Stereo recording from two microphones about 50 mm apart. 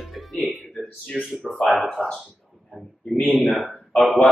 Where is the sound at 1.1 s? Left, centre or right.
Centre.